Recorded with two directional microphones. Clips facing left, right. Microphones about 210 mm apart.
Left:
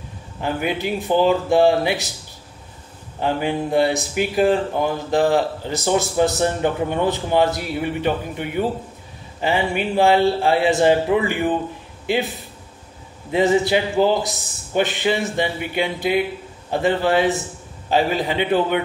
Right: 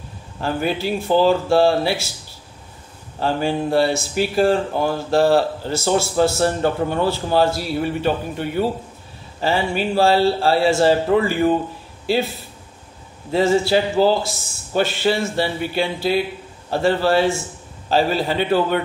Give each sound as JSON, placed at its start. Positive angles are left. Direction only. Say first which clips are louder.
{"t": 0.4, "sound": "speech", "louder": "right 1 dB", "side_deg": 15}
{"t": 3.2, "sound": "speech", "louder": "right 1 dB", "side_deg": 15}
{"t": 13.3, "sound": "speech", "louder": "even", "side_deg": 20}